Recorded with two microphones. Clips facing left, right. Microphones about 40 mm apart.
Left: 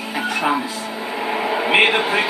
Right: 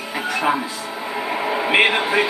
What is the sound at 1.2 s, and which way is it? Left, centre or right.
Vehicle, centre.